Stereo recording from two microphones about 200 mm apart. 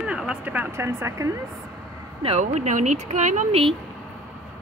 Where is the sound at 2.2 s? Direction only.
35° right (ahead or behind).